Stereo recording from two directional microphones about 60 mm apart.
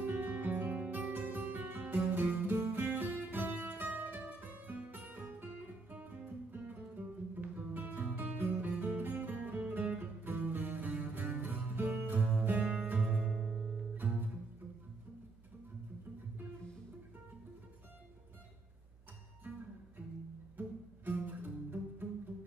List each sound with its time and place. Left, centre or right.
0.1 s music: right
13.2 s music: centre
20.5 s music: right